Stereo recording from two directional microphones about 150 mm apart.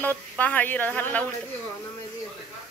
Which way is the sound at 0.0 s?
10° left (ahead or behind).